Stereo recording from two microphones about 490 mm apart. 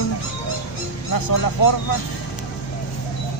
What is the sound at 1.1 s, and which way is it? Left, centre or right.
Speech, left.